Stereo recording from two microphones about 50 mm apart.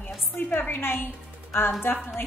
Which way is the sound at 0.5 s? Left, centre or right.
Left.